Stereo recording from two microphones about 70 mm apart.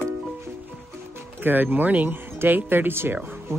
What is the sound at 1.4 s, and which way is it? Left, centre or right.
Speech, right.